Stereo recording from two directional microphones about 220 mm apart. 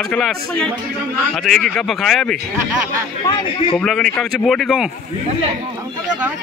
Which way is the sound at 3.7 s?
5° left (ahead or behind).